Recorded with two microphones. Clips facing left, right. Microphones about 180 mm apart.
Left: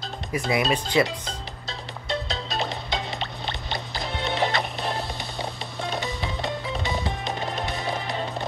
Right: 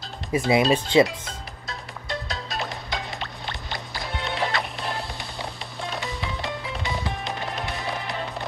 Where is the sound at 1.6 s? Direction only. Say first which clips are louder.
Left 1 dB; 25° left (ahead or behind).